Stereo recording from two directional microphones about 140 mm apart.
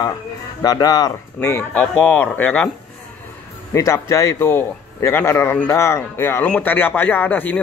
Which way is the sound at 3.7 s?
20° left (ahead or behind).